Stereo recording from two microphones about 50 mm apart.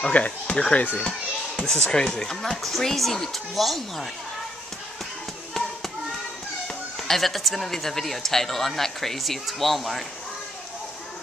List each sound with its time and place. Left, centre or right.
0.0 s speech: left; by 4.1 s centre
7.0 s speech: centre